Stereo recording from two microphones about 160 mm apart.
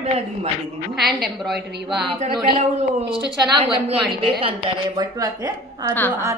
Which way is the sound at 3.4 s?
30° right (ahead or behind).